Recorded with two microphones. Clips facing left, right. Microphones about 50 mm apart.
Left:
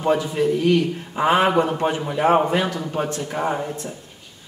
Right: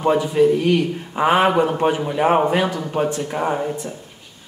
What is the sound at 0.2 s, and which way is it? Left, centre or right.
A man's voice, centre.